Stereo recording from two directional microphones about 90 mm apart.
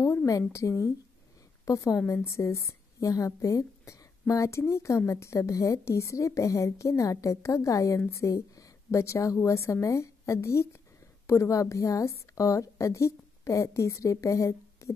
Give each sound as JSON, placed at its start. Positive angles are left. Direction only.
{"t": 0.0, "sound": "a woman's voice", "side_deg": 30}